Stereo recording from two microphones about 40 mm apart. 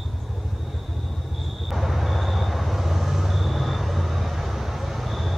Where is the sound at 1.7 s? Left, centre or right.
Centre.